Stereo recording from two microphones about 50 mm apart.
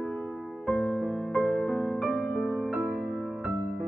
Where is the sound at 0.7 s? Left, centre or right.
Left.